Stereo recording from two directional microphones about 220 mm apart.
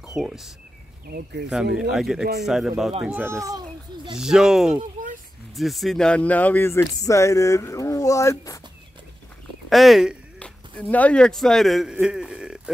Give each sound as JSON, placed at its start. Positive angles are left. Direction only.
{"t": 0.1, "sound": "speech", "side_deg": -5}
{"t": 1.8, "sound": "speech", "side_deg": 0}
{"t": 3.4, "sound": "a sound", "side_deg": -20}
{"t": 4.2, "sound": "speech", "side_deg": 0}
{"t": 9.7, "sound": "speech", "side_deg": 0}